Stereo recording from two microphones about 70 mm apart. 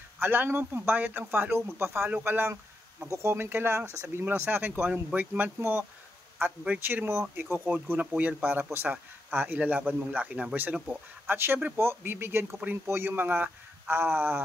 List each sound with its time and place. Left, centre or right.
0.2 s speech: right